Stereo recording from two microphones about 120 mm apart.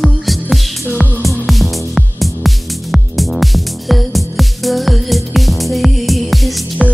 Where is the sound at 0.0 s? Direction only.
Centre (ahead or behind).